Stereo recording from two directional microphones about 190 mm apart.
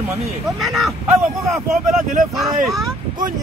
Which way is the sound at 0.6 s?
Centre (ahead or behind).